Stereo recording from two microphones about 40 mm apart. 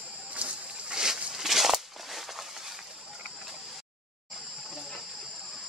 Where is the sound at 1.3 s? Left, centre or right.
Centre.